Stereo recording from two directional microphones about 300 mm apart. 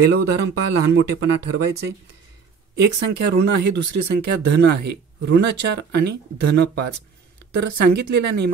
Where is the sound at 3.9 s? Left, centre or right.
Right.